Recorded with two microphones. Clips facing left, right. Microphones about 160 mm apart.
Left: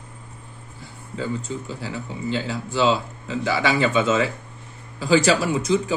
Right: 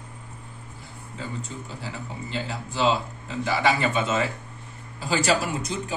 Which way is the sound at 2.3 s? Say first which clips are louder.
Left 7 dB; 90° left.